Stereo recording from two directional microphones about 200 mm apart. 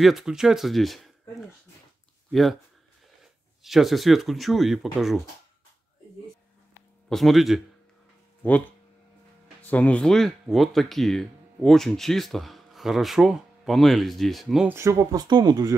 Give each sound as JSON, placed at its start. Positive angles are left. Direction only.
{"t": 0.0, "sound": "speech", "side_deg": 0}
{"t": 3.2, "sound": "speech", "side_deg": 0}
{"t": 7.1, "sound": "speech", "side_deg": 0}